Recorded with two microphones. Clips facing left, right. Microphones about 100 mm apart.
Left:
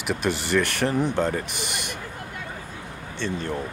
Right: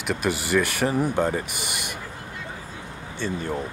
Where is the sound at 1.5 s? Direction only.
50° left (ahead or behind).